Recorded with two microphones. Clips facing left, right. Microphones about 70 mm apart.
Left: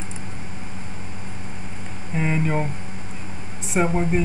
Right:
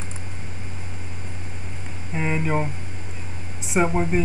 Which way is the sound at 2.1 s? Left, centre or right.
Centre.